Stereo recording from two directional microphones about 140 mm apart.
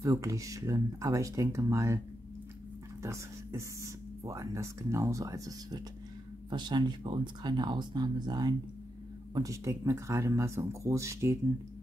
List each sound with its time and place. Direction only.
0.0 s speech: 20° right (ahead or behind)
3.0 s speech: 20° right (ahead or behind)